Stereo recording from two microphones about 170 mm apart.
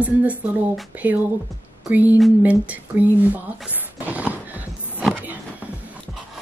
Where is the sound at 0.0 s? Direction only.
10° right (ahead or behind).